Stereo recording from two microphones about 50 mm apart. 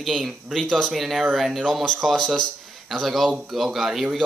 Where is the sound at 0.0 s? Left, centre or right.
Centre.